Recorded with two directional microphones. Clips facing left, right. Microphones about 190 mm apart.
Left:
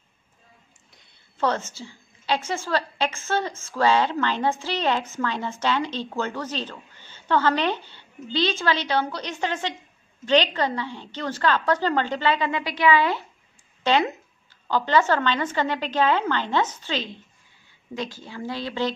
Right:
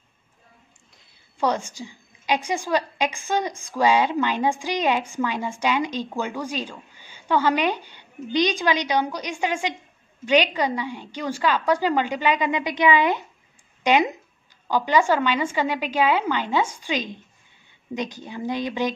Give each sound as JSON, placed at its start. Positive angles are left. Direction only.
{"t": 1.4, "sound": "a woman's voice", "side_deg": -15}